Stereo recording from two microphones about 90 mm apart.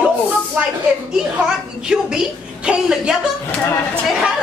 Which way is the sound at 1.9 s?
10° right (ahead or behind).